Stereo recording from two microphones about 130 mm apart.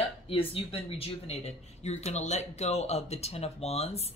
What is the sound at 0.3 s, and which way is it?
Speech, 45° left (ahead or behind).